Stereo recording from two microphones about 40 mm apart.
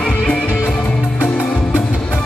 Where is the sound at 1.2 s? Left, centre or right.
Left.